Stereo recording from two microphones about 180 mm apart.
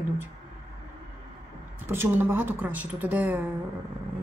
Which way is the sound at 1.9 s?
10° right (ahead or behind).